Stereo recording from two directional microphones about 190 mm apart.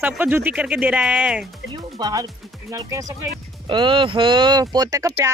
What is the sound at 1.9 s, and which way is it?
Speech, 20° right (ahead or behind).